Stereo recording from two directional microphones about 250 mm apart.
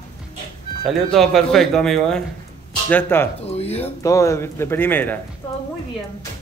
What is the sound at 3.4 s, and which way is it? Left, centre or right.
Speech, left.